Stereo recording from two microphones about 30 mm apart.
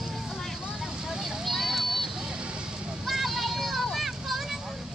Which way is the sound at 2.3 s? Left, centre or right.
Right.